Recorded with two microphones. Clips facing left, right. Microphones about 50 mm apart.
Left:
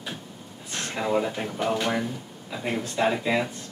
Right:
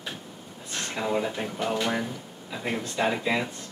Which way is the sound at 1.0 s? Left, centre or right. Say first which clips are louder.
Left 2 dB; centre.